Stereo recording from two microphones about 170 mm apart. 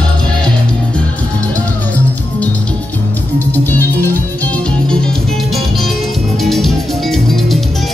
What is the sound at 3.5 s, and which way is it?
Music, 10° left (ahead or behind).